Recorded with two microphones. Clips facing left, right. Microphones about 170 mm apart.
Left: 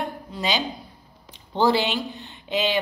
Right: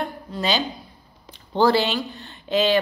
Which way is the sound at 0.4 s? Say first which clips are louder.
Right 2 dB; 15° left (ahead or behind).